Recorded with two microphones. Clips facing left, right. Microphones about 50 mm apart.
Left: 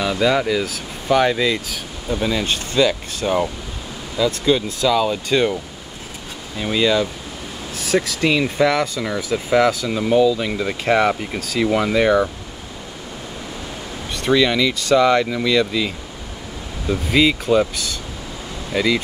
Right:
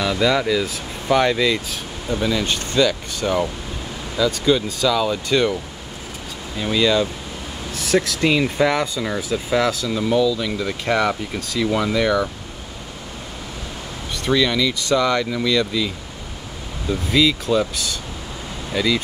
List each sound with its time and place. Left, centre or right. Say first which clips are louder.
0.0 s speech: left 1 dB; centre
1.1 s speech: left 1 dB; centre
2.4 s speech: left 1 dB; left
6.6 s speech: even; centre
8.4 s speech: left 1 dB; centre
9.3 s speech: left 4 dB; left
14.3 s speech: left 2 dB; centre
17.1 s speech: left 2 dB; left
18.7 s speech: left 2 dB; centre